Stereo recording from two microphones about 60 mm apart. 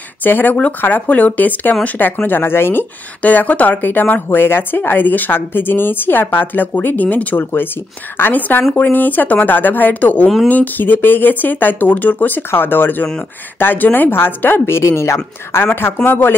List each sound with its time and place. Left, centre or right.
0.2 s speech: left
3.2 s a woman's voice: left
14.8 s speech: left
15.6 s speech: left